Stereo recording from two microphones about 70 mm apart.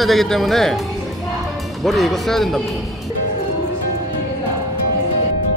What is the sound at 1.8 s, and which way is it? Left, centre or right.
Speech, centre.